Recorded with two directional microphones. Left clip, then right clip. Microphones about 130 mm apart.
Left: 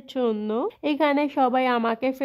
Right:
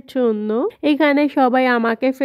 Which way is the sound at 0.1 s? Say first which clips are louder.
Right 6 dB; 35° right (ahead or behind).